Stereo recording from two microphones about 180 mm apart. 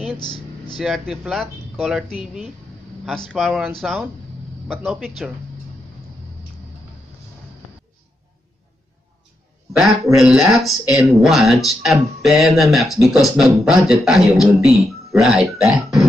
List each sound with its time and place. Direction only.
0.2 s a sound: 25° left (ahead or behind)
0.7 s speech: centre (ahead or behind)
9.7 s a man's voice: centre (ahead or behind)